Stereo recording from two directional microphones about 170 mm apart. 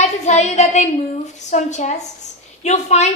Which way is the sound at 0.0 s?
45° left (ahead or behind).